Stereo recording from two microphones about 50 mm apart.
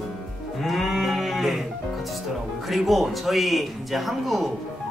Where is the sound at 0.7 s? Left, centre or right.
Centre.